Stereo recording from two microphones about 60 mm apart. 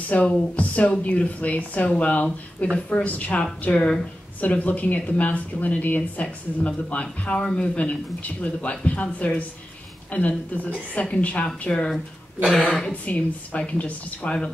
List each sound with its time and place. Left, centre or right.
0.1 s speech: left